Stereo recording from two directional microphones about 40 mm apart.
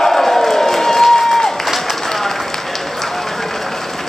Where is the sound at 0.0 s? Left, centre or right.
Centre.